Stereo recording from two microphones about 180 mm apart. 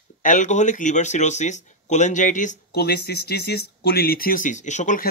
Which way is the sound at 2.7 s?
65° left (ahead or behind).